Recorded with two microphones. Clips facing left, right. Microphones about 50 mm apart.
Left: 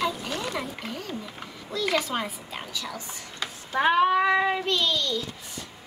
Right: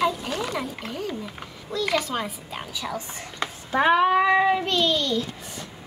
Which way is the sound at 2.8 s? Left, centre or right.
Right.